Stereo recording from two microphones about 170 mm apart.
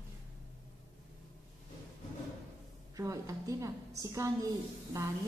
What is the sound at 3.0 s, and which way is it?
A woman's voice, 20° right (ahead or behind).